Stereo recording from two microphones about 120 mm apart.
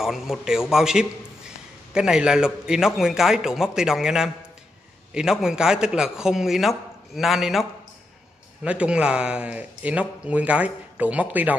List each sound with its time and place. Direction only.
0.0 s speech: 5° right (ahead or behind)
8.6 s a man's voice: 10° right (ahead or behind)